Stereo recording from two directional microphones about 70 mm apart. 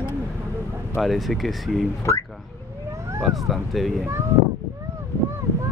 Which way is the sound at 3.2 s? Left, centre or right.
Centre.